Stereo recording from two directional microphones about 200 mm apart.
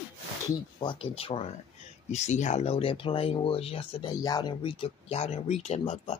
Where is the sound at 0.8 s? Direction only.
25° left (ahead or behind).